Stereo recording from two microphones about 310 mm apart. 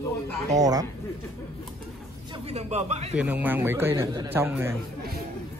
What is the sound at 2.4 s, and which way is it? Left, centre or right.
Speech, right.